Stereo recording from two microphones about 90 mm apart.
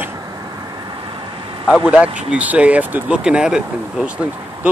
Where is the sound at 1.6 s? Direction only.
15° right (ahead or behind).